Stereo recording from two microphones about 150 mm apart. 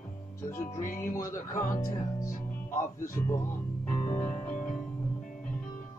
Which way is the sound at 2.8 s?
20° left (ahead or behind).